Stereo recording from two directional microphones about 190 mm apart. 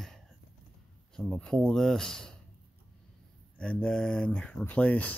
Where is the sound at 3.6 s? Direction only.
5° left (ahead or behind).